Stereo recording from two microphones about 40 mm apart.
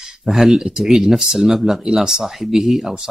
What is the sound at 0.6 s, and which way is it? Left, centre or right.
Speech, centre.